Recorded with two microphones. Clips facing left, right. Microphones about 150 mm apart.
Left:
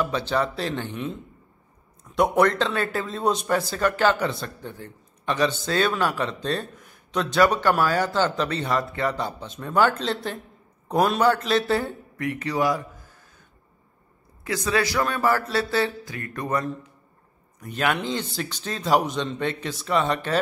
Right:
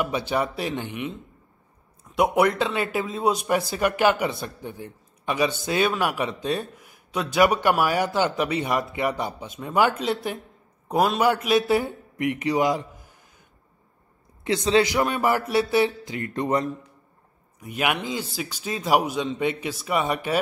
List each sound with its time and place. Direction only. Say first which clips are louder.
0.0 s a man's voice: even; 15° right (ahead or behind)
2.1 s a man's voice: even; 10° right (ahead or behind)
3.1 s a man's voice: even; 5° right (ahead or behind)
12.2 s a man's voice: right 2 dB; 20° right (ahead or behind)
14.4 s speech: right 4 dB; 25° right (ahead or behind)
17.6 s a man's voice: left 1 dB; 10° right (ahead or behind)